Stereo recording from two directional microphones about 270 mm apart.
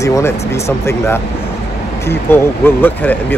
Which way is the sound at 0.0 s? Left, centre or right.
Centre.